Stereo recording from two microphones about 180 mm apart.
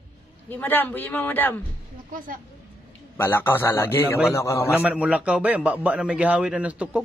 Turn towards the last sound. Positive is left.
turn(degrees=-5)  # may be behind; listen again after turning